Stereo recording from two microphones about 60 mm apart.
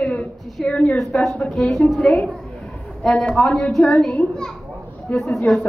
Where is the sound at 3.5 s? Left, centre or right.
Left.